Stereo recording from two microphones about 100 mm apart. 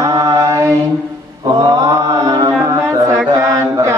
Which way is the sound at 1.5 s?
40° right (ahead or behind).